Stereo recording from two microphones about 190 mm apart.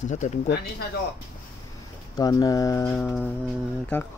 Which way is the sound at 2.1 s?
20° left (ahead or behind).